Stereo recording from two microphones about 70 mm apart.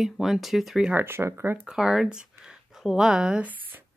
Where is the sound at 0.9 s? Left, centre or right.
Right.